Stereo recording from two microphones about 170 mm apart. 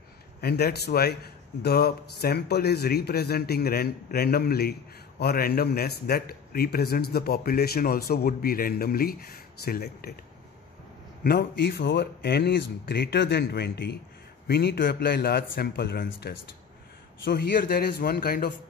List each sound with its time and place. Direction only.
0.4 s a man's voice: 65° left (ahead or behind)
11.2 s a man's voice: 70° left (ahead or behind)